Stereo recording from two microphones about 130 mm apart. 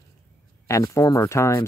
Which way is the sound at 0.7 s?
25° left (ahead or behind).